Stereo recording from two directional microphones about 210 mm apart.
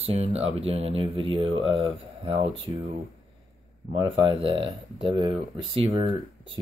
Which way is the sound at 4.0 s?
25° right (ahead or behind).